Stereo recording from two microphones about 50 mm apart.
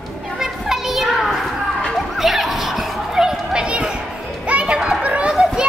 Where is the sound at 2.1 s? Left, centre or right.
Centre.